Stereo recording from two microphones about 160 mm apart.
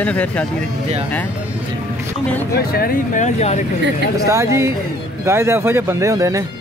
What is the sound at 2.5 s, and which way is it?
Speech, 75° left (ahead or behind).